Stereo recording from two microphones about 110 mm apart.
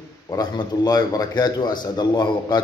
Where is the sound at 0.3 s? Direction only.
35° left (ahead or behind).